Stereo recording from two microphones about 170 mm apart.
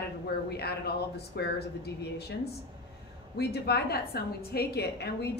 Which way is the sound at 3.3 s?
70° left (ahead or behind).